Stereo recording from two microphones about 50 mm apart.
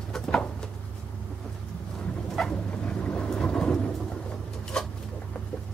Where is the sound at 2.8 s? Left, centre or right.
Left.